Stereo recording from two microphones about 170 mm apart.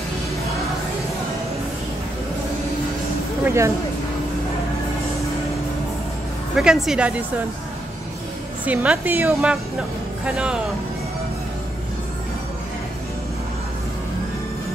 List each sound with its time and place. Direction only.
3.4 s a woman's voice: 15° right (ahead or behind)
6.5 s speech: 5° right (ahead or behind)
8.6 s a woman's voice: 5° right (ahead or behind)